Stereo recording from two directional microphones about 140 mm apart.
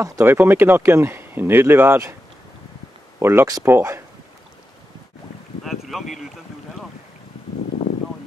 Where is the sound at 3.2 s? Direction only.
15° right (ahead or behind).